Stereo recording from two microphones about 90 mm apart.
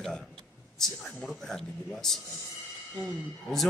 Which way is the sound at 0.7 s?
5° left (ahead or behind).